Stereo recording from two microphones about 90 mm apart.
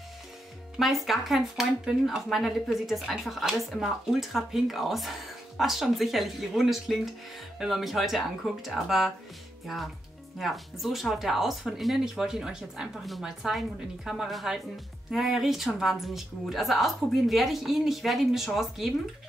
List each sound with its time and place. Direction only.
0.7 s speech: centre (ahead or behind)
10.4 s speech: centre (ahead or behind)